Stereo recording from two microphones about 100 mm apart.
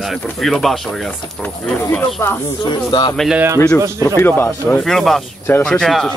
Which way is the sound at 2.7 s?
50° left (ahead or behind).